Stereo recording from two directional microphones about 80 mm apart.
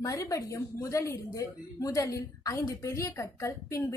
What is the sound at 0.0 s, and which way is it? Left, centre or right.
A woman's voice, left.